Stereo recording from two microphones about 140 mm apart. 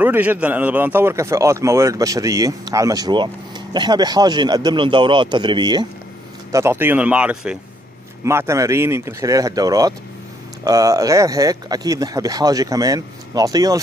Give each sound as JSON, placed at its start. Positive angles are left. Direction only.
{"t": 0.0, "sound": "a man's voice", "side_deg": -10}
{"t": 6.5, "sound": "speech", "side_deg": -15}
{"t": 8.2, "sound": "a man's voice", "side_deg": -20}